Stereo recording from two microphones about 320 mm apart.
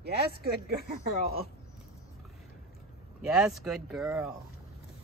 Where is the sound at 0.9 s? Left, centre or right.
Right.